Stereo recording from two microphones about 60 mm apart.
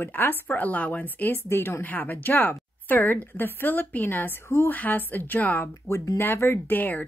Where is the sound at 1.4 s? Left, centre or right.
Left.